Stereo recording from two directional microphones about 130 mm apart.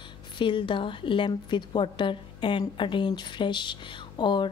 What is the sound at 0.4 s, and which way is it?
A woman's voice, 40° left (ahead or behind).